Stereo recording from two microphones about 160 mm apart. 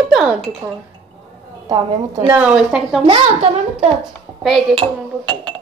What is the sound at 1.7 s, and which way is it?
Speech, 25° right (ahead or behind).